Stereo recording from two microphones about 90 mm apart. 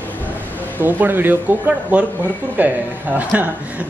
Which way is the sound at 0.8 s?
20° right (ahead or behind).